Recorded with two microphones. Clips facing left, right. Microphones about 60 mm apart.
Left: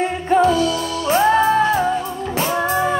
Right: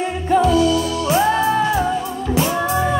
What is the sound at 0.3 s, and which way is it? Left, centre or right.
Music, left.